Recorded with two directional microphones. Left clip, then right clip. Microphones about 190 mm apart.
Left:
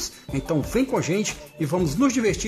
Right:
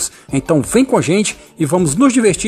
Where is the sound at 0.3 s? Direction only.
35° right (ahead or behind).